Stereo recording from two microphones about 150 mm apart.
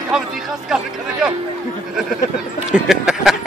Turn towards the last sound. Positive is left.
turn(degrees=0)  # may be behind; listen again after turning